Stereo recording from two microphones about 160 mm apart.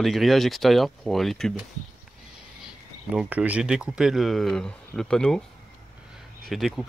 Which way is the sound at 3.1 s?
10° right (ahead or behind).